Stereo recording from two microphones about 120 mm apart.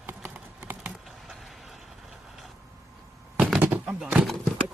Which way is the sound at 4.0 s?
5° right (ahead or behind).